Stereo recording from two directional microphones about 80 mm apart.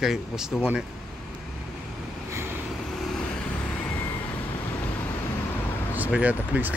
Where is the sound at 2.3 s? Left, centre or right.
Right.